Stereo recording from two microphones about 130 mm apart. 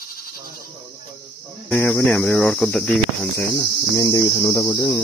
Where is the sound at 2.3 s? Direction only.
5° left (ahead or behind).